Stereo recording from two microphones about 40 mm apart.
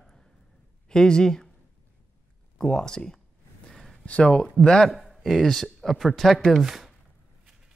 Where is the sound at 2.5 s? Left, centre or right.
Left.